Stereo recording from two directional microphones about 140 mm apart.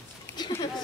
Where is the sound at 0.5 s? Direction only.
30° left (ahead or behind).